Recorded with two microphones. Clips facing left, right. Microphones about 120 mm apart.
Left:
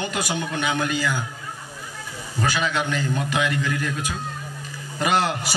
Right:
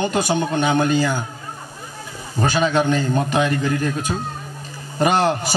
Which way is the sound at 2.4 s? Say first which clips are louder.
Right 6 dB; 30° right (ahead or behind).